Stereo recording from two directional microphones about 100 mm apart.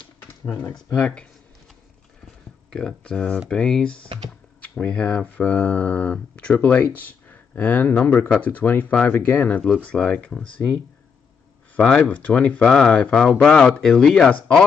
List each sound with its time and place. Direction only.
0.9 s speech: 10° left (ahead or behind)
2.7 s speech: 5° left (ahead or behind)
11.7 s speech: 10° left (ahead or behind)